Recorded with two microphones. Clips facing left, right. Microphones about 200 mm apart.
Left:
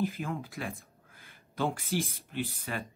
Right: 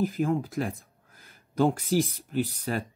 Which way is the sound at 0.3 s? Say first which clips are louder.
Right 9 dB; 40° right (ahead or behind).